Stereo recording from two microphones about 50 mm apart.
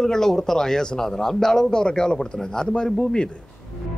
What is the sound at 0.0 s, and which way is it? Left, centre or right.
A man's voice, centre.